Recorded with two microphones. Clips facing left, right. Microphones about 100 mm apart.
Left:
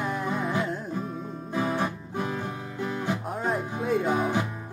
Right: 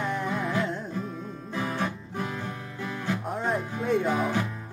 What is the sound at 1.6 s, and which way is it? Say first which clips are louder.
Music: left 3 dB; 15° left (ahead or behind).